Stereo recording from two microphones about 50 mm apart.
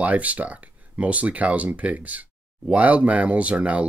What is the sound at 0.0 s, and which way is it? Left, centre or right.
Speech, right.